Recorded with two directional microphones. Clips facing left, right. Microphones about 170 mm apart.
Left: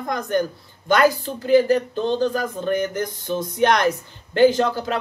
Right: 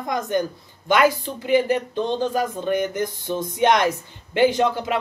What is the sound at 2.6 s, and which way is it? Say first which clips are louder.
Speech: even; 15° right (ahead or behind).